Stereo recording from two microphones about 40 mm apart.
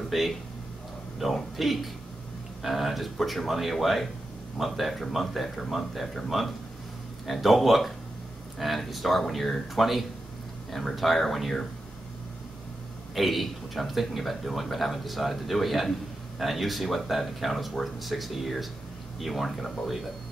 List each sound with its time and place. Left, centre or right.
0.1 s a man's voice: centre
13.1 s a man's voice: centre
19.5 s speech: centre